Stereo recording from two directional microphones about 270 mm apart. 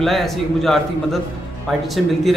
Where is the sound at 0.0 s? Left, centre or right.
Centre.